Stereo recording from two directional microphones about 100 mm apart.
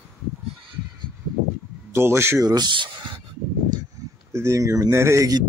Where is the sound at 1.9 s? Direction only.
25° right (ahead or behind).